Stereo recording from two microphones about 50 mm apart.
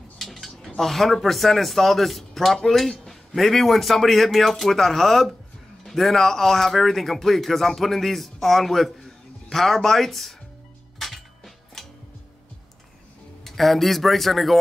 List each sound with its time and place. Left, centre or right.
0.2 s a sound: centre
0.7 s speech: centre
11.0 s music: centre
13.4 s speech: centre